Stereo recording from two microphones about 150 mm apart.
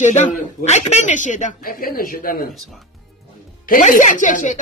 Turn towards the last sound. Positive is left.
turn(degrees=60)  # may be behind; listen again after turning